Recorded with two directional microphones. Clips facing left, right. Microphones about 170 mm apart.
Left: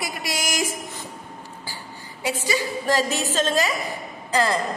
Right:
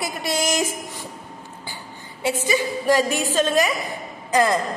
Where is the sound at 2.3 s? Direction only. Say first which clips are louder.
Right 3 dB; 20° right (ahead or behind).